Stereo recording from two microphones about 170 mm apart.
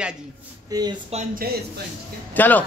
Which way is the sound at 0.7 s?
25° right (ahead or behind).